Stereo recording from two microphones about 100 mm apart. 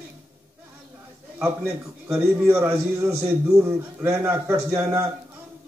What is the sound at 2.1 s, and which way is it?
Speech, 20° right (ahead or behind).